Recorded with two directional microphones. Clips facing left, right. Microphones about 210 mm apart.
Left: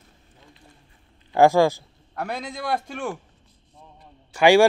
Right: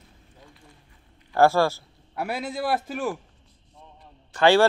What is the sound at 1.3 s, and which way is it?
Speech, 15° left (ahead or behind).